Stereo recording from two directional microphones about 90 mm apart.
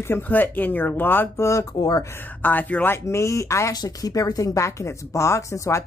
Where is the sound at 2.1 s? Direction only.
20° left (ahead or behind).